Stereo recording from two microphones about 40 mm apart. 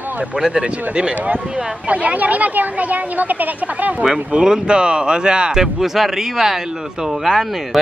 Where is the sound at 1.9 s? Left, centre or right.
Right.